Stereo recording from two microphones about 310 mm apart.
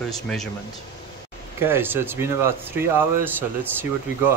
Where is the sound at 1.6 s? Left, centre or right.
Centre.